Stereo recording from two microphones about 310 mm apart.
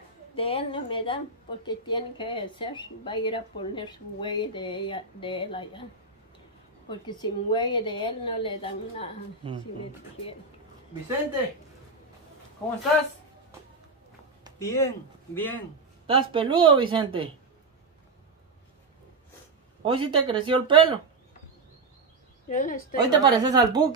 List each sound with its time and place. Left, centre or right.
0.4 s a woman's voice: centre
6.9 s a woman's voice: centre
14.6 s a woman's voice: centre
16.1 s a woman's voice: centre
19.8 s a woman's voice: centre
22.5 s a woman's voice: left
23.0 s a woman's voice: centre